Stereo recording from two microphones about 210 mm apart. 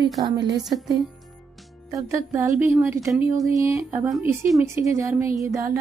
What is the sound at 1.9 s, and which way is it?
Speech, 15° right (ahead or behind).